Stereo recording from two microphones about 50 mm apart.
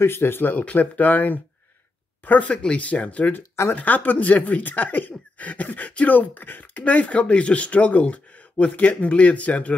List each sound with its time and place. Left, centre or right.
0.0 s speech: left